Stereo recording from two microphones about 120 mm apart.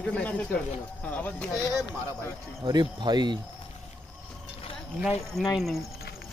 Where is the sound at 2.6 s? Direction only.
35° right (ahead or behind).